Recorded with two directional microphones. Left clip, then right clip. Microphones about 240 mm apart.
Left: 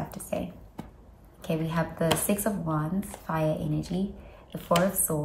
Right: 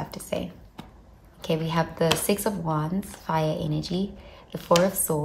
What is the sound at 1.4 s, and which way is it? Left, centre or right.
A woman's voice, right.